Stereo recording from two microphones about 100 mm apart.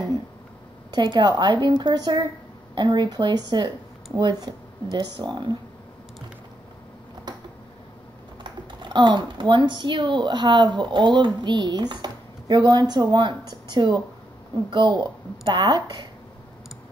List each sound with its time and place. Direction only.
0.9 s speech: 45° right (ahead or behind)
8.5 s speech: 50° right (ahead or behind)